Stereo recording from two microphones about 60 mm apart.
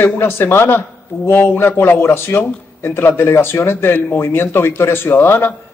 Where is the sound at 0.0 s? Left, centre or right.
Left.